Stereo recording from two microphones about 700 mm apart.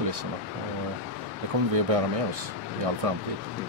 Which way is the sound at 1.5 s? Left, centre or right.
Right.